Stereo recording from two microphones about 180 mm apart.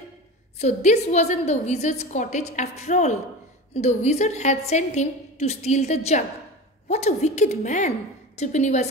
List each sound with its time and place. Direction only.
0.6 s a woman's voice: 40° left (ahead or behind)